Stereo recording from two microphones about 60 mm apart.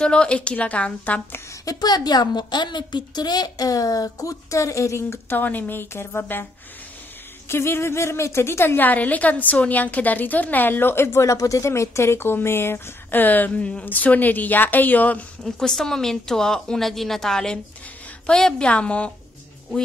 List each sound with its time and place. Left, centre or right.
0.0 s a woman's voice: centre
1.7 s a woman's voice: left
3.3 s speech: left
5.4 s a woman's voice: left
7.4 s a woman's voice: left
11.2 s speech: left
13.6 s a woman's voice: centre
15.4 s a woman's voice: centre